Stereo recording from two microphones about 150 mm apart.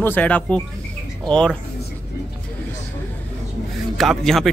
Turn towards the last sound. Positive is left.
turn(degrees=0)  # may be behind; listen again after turning